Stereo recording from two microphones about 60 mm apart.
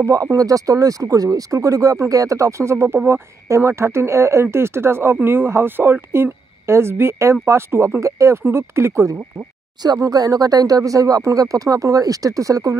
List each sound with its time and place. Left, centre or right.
0.0 s speech: right
9.9 s speech: right